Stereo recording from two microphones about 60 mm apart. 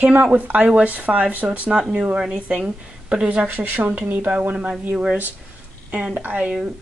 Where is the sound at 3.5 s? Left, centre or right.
Right.